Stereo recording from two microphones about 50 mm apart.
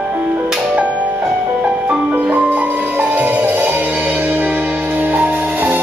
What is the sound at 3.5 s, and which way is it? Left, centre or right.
Music, right.